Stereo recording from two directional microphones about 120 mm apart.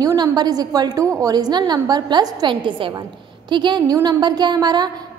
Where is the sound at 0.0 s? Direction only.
30° right (ahead or behind).